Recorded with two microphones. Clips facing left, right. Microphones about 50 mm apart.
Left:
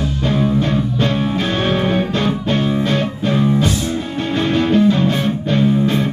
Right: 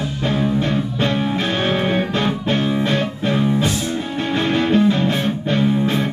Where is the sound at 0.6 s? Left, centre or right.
Right.